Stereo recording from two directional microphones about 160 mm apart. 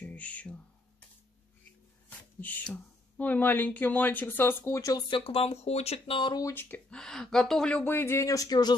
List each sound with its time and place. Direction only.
0.0 s music: 10° left (ahead or behind)
2.0 s a sound: 10° left (ahead or behind)
2.7 s speech: 10° left (ahead or behind); by 6.5 s 25° left (ahead or behind)
6.5 s speech: 10° left (ahead or behind)